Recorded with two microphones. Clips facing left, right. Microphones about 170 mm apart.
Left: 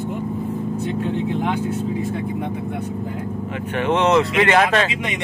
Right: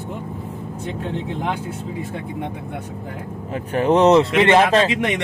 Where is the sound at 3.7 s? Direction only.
35° right (ahead or behind).